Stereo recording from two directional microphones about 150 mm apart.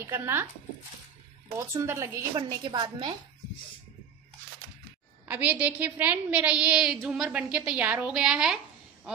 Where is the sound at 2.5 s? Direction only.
30° right (ahead or behind).